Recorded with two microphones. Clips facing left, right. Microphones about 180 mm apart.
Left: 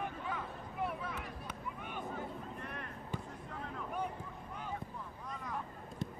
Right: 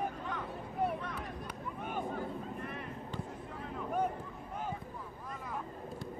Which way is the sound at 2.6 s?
5° right (ahead or behind).